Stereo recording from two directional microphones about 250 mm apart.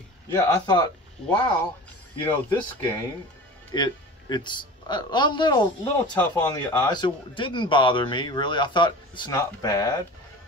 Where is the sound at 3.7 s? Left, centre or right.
Centre.